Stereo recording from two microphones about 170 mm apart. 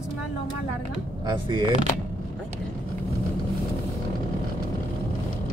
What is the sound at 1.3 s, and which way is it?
Speech, 30° right (ahead or behind).